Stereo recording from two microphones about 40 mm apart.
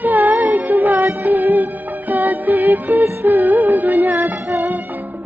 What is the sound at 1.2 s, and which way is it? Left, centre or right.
Music, right.